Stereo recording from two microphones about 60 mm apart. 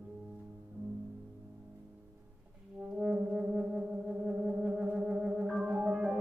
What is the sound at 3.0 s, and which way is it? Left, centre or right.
Music, centre.